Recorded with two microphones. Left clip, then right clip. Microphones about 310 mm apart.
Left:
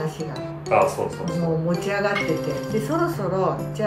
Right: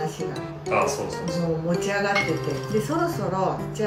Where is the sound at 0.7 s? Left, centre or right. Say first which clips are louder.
Left 4 dB; centre.